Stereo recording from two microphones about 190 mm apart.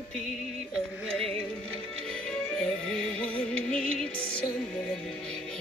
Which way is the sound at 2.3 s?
5° left (ahead or behind).